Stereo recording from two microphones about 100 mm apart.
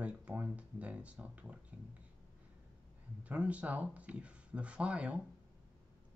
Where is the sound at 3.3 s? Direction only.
15° right (ahead or behind).